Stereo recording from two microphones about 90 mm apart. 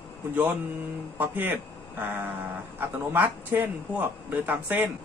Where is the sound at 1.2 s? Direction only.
20° right (ahead or behind).